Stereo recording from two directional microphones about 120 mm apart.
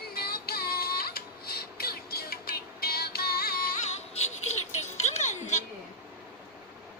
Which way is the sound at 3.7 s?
65° left (ahead or behind).